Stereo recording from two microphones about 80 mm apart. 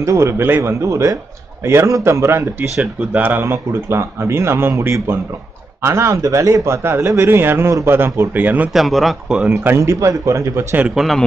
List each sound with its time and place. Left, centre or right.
0.0 s a man's voice: right
8.7 s speech: centre
9.5 s a man's voice: right
9.8 s speech: right
11.0 s speech: centre